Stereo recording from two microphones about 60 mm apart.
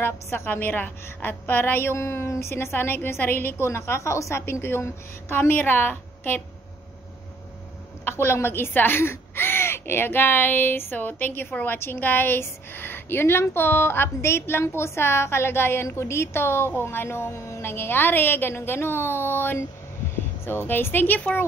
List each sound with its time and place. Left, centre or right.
0.0 s speech: left
3.6 s a woman's voice: left
8.0 s speech: left